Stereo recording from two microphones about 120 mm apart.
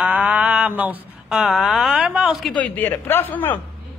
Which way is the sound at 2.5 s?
15° left (ahead or behind).